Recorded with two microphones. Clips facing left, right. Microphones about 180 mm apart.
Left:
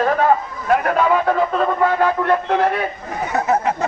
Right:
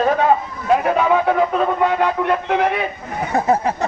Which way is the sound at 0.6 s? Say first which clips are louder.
Right 1 dB; 20° right (ahead or behind).